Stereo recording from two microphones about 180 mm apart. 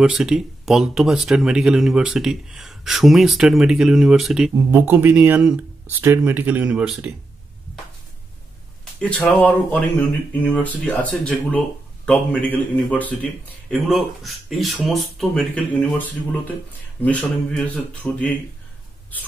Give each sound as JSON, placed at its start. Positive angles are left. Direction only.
{"t": 0.0, "sound": "speech", "side_deg": -5}
{"t": 9.0, "sound": "a man's voice", "side_deg": 10}